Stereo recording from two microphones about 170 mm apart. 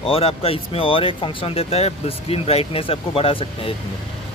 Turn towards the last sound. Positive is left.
turn(degrees=35)  # may be behind; listen again after turning